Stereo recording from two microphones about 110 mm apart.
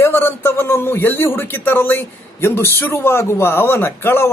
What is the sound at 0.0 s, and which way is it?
Speech, 20° left (ahead or behind).